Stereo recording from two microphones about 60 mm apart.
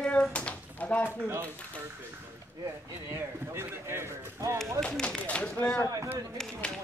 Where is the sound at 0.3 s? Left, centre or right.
Left.